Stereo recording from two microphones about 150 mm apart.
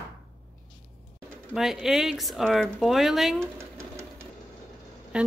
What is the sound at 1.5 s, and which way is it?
Speech, 5° right (ahead or behind).